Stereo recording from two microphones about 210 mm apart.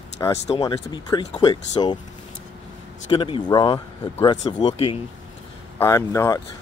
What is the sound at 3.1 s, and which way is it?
Speech, 20° left (ahead or behind).